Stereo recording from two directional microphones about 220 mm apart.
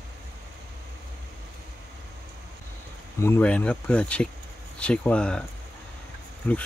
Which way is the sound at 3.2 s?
10° left (ahead or behind).